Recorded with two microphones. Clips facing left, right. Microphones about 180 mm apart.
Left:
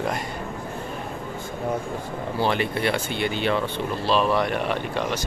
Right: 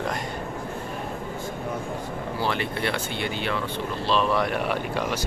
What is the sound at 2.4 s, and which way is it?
Speech, 15° left (ahead or behind).